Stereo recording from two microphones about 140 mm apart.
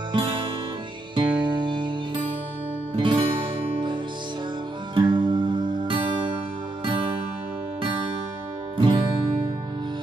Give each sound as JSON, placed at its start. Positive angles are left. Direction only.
{"t": 0.1, "sound": "guitar", "side_deg": -35}
{"t": 1.1, "sound": "music", "side_deg": -35}
{"t": 3.0, "sound": "music", "side_deg": -35}
{"t": 4.9, "sound": "music", "side_deg": -35}
{"t": 8.7, "sound": "music", "side_deg": -35}